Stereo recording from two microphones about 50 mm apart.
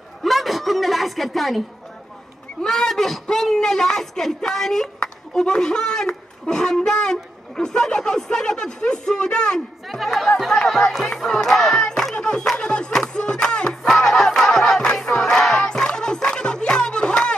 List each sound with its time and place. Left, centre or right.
0.2 s a sound: centre
2.6 s speech: centre
9.8 s speech: centre
12.2 s music: centre
12.5 s crowd: centre